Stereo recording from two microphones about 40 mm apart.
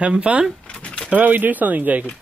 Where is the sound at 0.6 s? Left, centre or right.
Left.